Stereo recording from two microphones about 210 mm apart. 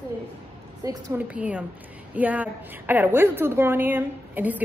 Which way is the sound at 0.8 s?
15° right (ahead or behind).